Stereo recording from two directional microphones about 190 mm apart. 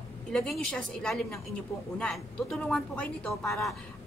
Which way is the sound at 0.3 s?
5° left (ahead or behind).